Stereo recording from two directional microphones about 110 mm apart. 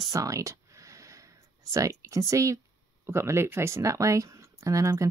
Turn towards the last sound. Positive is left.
turn(degrees=-30)  # may be behind; listen again after turning